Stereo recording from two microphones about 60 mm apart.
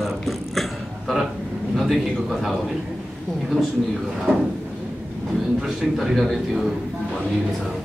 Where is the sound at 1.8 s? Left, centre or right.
Centre.